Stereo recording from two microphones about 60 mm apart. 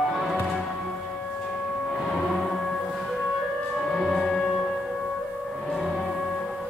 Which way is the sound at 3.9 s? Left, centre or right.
Centre.